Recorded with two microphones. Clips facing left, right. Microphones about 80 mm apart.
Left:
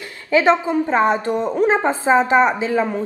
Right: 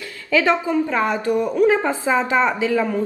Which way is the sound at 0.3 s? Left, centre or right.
Left.